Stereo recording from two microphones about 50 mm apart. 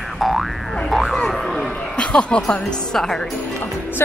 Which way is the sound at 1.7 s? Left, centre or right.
Centre.